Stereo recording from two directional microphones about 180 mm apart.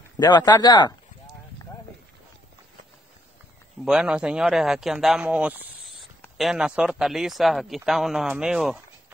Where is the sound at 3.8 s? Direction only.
5° right (ahead or behind).